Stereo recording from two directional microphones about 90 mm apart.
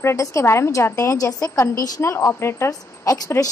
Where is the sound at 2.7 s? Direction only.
45° left (ahead or behind).